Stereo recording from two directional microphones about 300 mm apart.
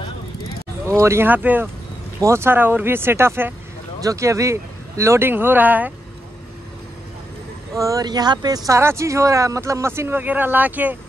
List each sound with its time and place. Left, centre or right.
0.8 s speech: centre
7.7 s speech: centre